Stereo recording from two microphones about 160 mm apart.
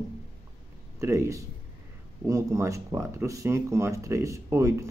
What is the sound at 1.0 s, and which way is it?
Speech, 20° right (ahead or behind).